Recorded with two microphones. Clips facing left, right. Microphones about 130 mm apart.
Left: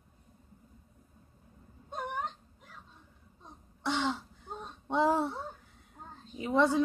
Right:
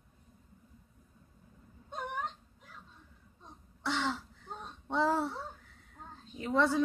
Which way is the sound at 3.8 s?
15° left (ahead or behind).